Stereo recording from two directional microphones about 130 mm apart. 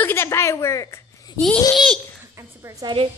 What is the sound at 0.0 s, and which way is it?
A woman's voice, 20° left (ahead or behind).